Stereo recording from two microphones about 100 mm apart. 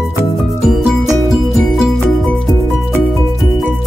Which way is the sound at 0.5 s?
Centre (ahead or behind).